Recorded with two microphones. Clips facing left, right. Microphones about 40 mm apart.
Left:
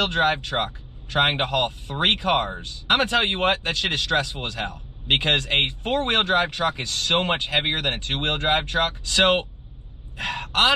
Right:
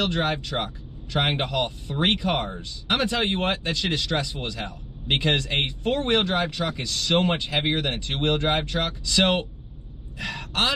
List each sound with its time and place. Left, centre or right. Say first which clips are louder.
0.0 s speech: left 3 dB; left